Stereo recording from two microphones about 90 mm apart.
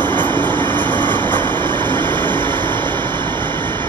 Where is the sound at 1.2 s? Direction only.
20° left (ahead or behind).